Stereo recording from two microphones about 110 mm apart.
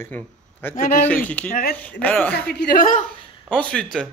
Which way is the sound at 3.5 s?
10° left (ahead or behind).